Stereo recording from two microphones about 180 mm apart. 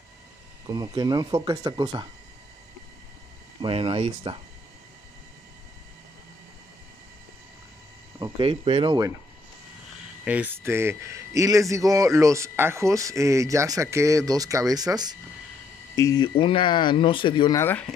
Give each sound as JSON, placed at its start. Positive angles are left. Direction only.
{"t": 0.7, "sound": "speech", "side_deg": -20}
{"t": 3.6, "sound": "speech", "side_deg": -30}
{"t": 8.2, "sound": "speech", "side_deg": -30}
{"t": 10.2, "sound": "speech", "side_deg": -10}
{"t": 16.0, "sound": "speech", "side_deg": 20}
{"t": 17.6, "sound": "speech", "side_deg": 10}